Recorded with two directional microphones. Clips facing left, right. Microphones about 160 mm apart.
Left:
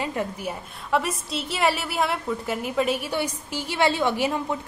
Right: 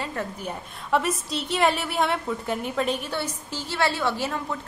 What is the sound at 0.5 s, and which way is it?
A woman's voice, centre (ahead or behind).